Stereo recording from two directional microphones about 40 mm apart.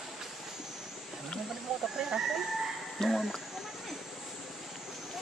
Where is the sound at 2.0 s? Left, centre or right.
Centre.